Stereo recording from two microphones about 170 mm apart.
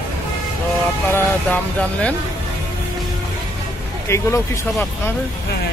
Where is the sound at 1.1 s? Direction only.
10° left (ahead or behind).